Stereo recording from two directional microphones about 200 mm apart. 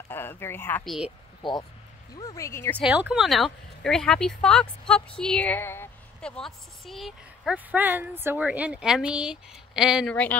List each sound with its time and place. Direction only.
0.1 s speech: 10° left (ahead or behind)
0.8 s speech: centre (ahead or behind)
1.4 s speech: 20° left (ahead or behind)
2.8 s speech: 5° right (ahead or behind)